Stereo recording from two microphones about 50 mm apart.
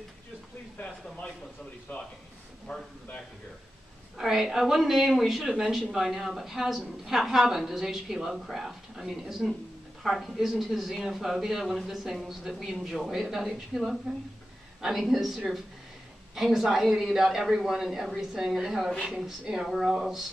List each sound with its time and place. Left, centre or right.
2.7 s a man's voice: centre
4.2 s speech: centre